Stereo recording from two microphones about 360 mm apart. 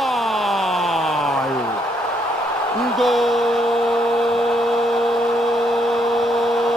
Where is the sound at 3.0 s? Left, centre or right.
Centre.